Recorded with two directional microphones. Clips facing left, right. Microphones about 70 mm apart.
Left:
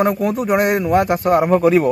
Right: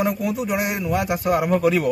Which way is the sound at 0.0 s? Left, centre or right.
Left.